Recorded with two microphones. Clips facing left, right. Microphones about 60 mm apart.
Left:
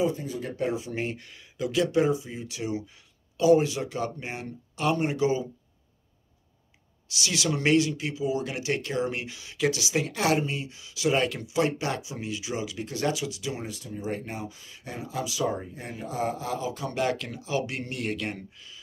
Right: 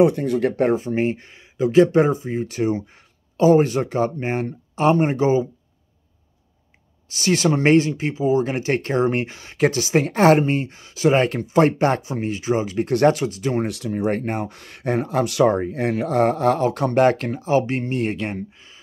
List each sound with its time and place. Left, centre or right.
0.0 s speech: right
0.7 s speech: right
7.1 s speech: right
13.7 s speech: right